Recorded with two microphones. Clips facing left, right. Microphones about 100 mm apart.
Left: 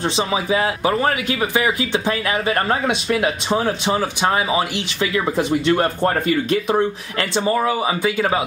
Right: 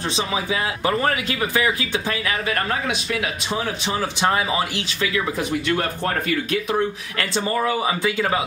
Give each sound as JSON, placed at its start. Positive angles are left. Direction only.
{"t": 0.1, "sound": "speech", "side_deg": 30}
{"t": 3.9, "sound": "speech", "side_deg": 15}
{"t": 5.0, "sound": "speech", "side_deg": 25}